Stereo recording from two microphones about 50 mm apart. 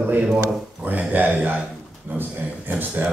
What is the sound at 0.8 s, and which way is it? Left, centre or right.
Speech, right.